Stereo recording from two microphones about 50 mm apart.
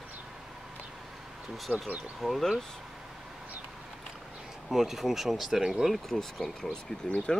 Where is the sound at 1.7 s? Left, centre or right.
Right.